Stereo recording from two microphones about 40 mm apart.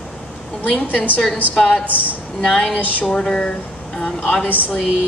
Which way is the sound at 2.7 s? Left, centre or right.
Left.